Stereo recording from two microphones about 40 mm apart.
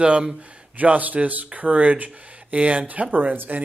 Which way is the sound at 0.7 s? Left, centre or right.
Right.